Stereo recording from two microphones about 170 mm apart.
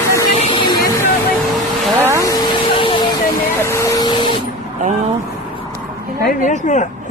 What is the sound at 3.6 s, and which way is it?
Vacuum cleaner, 15° left (ahead or behind).